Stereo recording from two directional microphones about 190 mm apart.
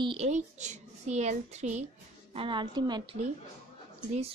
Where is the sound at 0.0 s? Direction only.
30° right (ahead or behind).